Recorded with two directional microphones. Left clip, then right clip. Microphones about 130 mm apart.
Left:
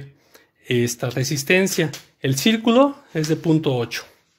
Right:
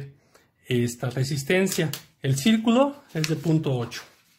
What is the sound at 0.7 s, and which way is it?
Speech, 35° left (ahead or behind).